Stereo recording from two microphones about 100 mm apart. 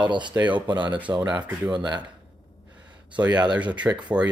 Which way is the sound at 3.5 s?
15° right (ahead or behind).